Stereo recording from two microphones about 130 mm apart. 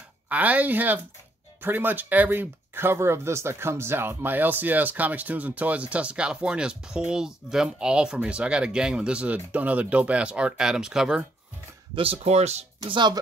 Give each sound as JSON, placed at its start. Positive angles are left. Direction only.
{"t": 0.3, "sound": "speech", "side_deg": -10}
{"t": 11.9, "sound": "speech", "side_deg": -45}
{"t": 12.8, "sound": "speech", "side_deg": -35}